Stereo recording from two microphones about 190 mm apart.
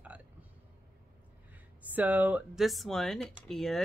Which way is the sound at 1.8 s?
10° right (ahead or behind).